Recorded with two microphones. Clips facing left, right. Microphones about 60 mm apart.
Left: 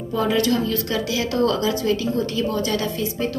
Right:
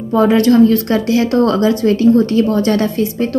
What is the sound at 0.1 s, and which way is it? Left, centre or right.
Speech, right.